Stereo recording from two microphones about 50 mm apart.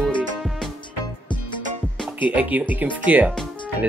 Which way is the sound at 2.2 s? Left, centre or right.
Right.